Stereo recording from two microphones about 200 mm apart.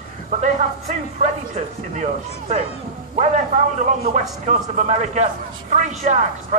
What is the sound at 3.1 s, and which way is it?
A man's voice, 35° right (ahead or behind).